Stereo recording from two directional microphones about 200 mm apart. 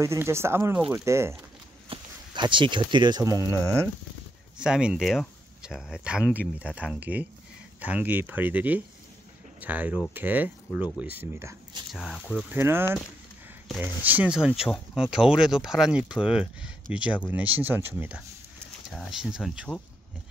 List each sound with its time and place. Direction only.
0.0 s speech: 15° right (ahead or behind)
1.9 s speech: 25° right (ahead or behind)
4.6 s speech: 5° right (ahead or behind)
11.9 s speech: centre (ahead or behind)
12.4 s speech: 10° right (ahead or behind)